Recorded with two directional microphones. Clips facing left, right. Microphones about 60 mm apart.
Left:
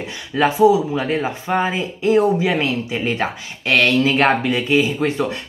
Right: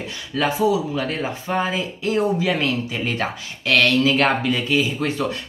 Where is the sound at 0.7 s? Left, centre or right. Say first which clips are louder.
Left 5 dB; left.